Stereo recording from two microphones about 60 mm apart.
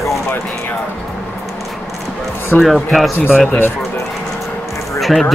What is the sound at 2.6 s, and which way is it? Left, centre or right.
Speech, centre.